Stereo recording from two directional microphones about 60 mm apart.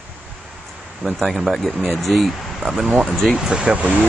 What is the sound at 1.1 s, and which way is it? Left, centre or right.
Speech, centre.